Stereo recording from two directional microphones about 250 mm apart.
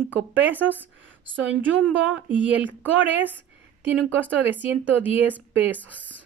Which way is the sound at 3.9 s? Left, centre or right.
Centre.